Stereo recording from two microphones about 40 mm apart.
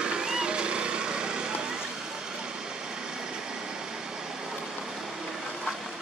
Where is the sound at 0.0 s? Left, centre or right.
Right.